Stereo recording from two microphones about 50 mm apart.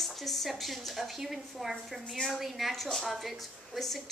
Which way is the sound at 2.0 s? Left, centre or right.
Centre.